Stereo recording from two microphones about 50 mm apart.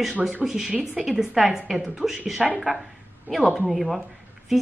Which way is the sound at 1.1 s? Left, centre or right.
Centre.